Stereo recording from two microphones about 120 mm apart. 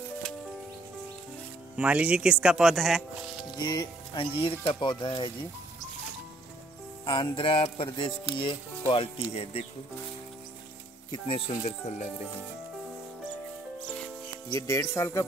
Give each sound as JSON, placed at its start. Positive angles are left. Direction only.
{"t": 1.8, "sound": "speech", "side_deg": -10}
{"t": 3.5, "sound": "speech", "side_deg": 40}
{"t": 7.1, "sound": "speech", "side_deg": 45}
{"t": 11.1, "sound": "speech", "side_deg": 45}
{"t": 14.5, "sound": "speech", "side_deg": 25}